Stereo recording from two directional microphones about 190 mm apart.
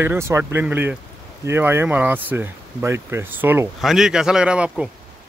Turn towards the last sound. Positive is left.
turn(degrees=-5)  # may be behind; listen again after turning